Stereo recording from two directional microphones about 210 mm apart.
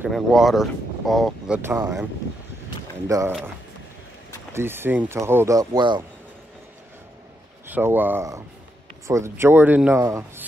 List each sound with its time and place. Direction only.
0.0 s speech: centre (ahead or behind)
3.1 s speech: 15° right (ahead or behind)
4.5 s speech: 10° right (ahead or behind)
7.6 s speech: 10° right (ahead or behind)